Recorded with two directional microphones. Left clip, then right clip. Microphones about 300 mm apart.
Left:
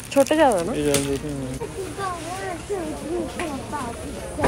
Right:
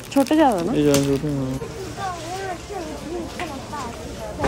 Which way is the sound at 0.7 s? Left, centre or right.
Right.